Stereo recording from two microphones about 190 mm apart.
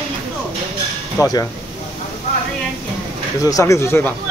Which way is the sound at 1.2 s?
20° left (ahead or behind).